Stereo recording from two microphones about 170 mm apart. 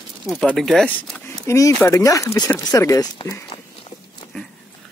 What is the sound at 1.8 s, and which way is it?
Speech, 20° left (ahead or behind).